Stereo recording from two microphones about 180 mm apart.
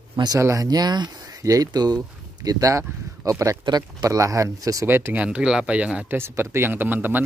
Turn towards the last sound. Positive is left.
turn(degrees=-10)  # may be behind; listen again after turning